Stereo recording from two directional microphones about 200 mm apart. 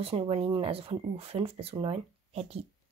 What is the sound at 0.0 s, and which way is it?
Speech, 30° right (ahead or behind).